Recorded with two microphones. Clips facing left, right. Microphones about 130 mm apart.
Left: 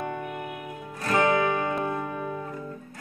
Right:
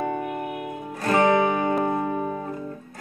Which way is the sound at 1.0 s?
35° right (ahead or behind).